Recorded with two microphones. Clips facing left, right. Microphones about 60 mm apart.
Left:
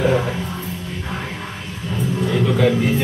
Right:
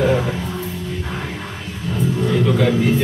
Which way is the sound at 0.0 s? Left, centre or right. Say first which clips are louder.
Right 1 dB; centre.